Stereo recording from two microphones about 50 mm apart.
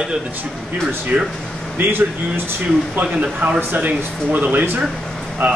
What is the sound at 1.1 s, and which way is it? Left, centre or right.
Speech, right.